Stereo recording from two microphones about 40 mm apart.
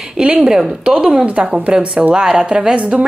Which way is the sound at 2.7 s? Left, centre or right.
Right.